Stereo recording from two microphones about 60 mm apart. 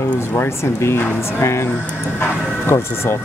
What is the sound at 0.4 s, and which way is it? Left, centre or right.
Speech, left.